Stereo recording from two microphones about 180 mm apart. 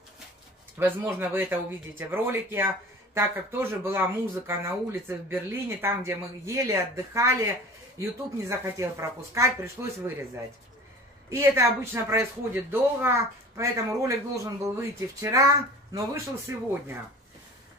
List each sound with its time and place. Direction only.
0.7 s speech: 10° right (ahead or behind)